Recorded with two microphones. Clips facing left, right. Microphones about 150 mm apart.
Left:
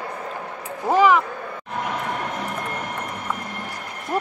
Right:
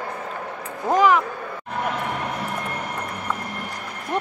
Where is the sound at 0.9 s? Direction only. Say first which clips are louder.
Left 1 dB; centre (ahead or behind).